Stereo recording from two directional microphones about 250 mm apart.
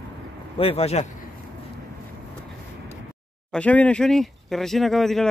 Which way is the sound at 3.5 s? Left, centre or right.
Centre.